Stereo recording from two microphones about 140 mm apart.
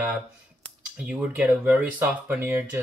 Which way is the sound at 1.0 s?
10° right (ahead or behind).